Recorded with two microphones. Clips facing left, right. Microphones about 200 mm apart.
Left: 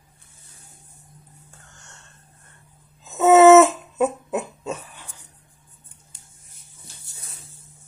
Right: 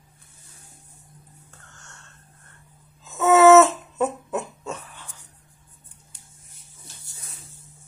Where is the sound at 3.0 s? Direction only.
20° left (ahead or behind).